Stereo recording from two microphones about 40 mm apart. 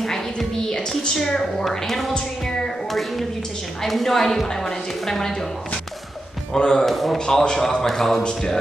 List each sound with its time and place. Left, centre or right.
0.0 s music: centre
1.3 s a woman's voice: centre
6.5 s speech: left
6.8 s a man's voice: centre
7.2 s a woman's voice: centre